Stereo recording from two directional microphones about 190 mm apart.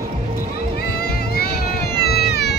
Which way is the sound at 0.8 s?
55° left (ahead or behind).